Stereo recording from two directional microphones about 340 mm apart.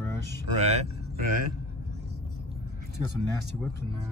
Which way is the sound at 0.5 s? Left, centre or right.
Centre.